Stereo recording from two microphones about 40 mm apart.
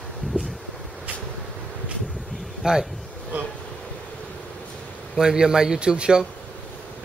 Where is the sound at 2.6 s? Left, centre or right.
Centre.